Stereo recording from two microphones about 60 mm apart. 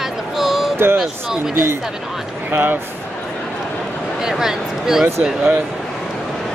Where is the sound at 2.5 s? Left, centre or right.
Right.